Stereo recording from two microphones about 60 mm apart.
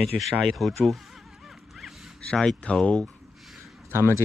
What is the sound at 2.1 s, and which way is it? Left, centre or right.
Speech, centre.